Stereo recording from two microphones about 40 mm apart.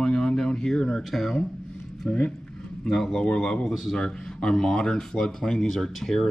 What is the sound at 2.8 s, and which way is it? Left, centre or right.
Speech, centre.